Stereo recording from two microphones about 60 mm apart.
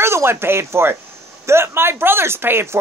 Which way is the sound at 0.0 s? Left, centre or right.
Right.